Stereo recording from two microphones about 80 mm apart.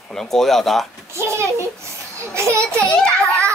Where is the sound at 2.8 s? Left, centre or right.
Centre.